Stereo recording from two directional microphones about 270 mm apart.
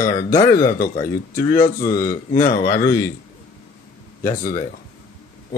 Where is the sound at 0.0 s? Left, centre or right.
Left.